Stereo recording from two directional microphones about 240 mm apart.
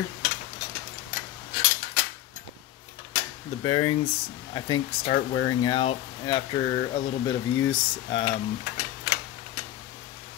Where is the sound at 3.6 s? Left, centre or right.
Centre.